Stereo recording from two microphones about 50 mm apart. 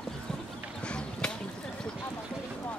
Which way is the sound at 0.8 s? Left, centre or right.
Centre.